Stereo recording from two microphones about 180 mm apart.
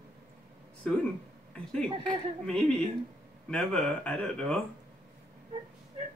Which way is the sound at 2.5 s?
5° left (ahead or behind).